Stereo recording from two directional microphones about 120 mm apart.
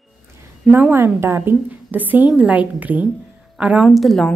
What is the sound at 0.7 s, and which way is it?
A woman's voice, 20° right (ahead or behind).